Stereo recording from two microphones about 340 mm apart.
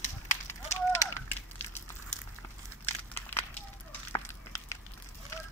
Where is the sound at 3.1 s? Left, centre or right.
Centre.